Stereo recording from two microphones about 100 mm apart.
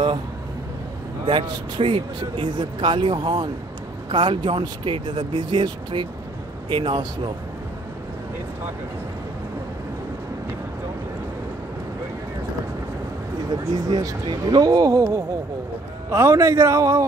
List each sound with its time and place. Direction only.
1.2 s speech: 60° right (ahead or behind)
13.5 s a man's voice: 40° right (ahead or behind)